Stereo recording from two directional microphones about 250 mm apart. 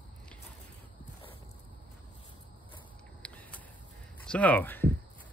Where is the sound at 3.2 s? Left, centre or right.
Centre.